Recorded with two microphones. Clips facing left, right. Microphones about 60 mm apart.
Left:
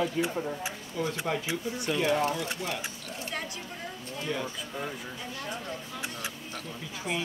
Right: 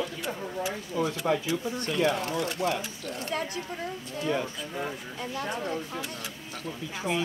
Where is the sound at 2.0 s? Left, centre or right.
Right.